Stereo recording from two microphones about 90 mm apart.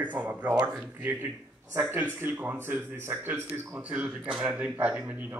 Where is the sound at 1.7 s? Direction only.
25° right (ahead or behind).